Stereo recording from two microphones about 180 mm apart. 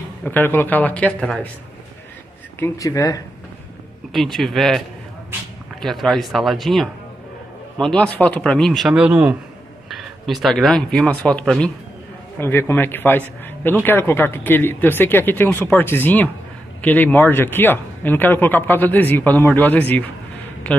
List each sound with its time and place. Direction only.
0.2 s speech: 10° left (ahead or behind)
2.6 s speech: 20° left (ahead or behind)
4.1 s a man's voice: centre (ahead or behind)